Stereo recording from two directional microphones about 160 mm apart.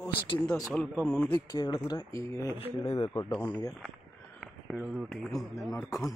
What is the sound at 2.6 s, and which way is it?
Speech, 35° left (ahead or behind).